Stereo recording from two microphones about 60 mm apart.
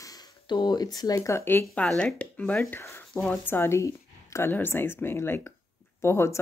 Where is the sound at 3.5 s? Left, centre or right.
Left.